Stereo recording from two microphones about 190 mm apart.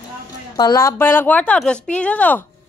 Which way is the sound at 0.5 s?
20° left (ahead or behind).